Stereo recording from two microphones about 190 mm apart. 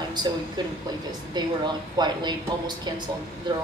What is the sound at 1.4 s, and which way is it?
Speech, 20° right (ahead or behind).